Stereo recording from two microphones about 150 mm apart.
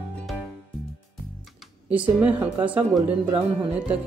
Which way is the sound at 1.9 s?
10° right (ahead or behind).